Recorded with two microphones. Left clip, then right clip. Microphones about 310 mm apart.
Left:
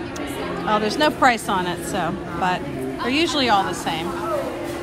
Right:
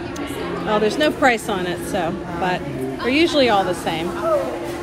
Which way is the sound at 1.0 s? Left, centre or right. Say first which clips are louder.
Even; centre.